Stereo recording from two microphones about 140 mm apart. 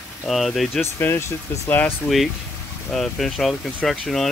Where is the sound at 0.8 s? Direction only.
20° left (ahead or behind).